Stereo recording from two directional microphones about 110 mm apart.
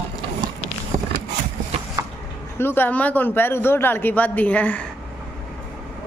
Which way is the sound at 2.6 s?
20° left (ahead or behind).